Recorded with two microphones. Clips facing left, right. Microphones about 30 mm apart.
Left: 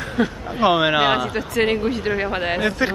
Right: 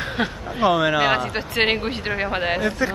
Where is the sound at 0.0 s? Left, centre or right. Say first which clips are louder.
Left 2 dB; right.